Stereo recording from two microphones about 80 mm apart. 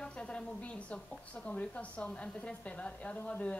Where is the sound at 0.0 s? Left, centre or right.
Centre.